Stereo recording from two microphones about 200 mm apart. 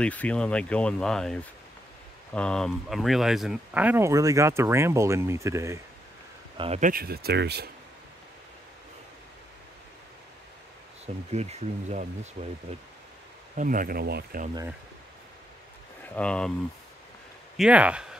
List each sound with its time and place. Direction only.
0.0 s speech: 5° left (ahead or behind); by 5.8 s 15° right (ahead or behind)
6.5 s speech: 25° right (ahead or behind)
6.8 s speech: 45° right (ahead or behind)
11.3 s speech: 35° right (ahead or behind)
13.6 s speech: 45° right (ahead or behind)
16.2 s speech: 5° left (ahead or behind)
17.6 s speech: 5° right (ahead or behind)